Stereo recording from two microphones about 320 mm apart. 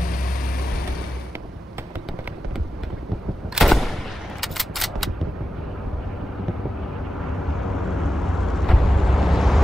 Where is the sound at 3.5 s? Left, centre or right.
Centre.